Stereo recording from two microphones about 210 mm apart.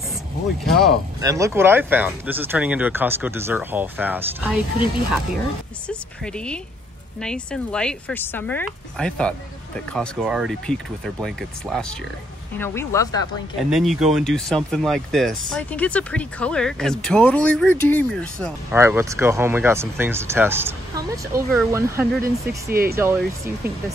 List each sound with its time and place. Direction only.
1.2 s speech: 15° right (ahead or behind)
5.9 s speech: 5° left (ahead or behind)
12.5 s speech: 10° left (ahead or behind)
13.7 s speech: centre (ahead or behind)
18.7 s speech: 10° right (ahead or behind)
22.7 s speech: 45° right (ahead or behind)
22.9 s speech: 10° right (ahead or behind)